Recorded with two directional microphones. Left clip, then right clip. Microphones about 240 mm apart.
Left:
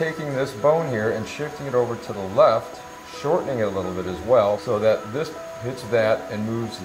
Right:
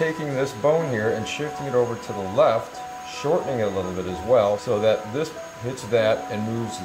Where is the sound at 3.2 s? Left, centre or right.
Centre.